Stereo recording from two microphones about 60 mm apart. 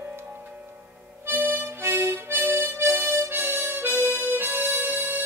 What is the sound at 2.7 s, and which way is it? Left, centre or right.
Harmonica, right.